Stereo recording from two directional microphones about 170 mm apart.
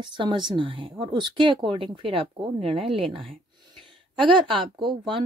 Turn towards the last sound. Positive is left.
turn(degrees=-30)  # may be behind; listen again after turning